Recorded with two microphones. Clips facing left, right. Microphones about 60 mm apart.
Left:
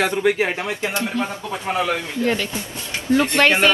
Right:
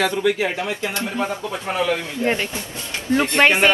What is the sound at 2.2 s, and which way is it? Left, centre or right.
Speech, right.